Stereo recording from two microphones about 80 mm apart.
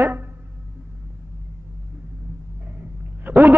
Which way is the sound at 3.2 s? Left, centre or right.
Right.